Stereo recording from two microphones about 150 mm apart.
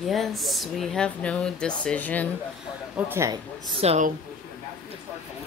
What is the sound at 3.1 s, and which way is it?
Speech, 20° right (ahead or behind).